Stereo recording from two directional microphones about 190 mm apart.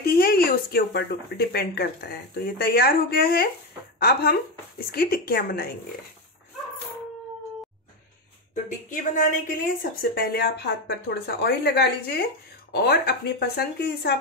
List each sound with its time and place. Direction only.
0.0 s a woman's voice: 55° left (ahead or behind)
8.8 s a woman's voice: 45° left (ahead or behind)